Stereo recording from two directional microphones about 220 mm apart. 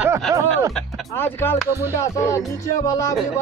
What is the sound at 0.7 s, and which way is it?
Music, 5° left (ahead or behind).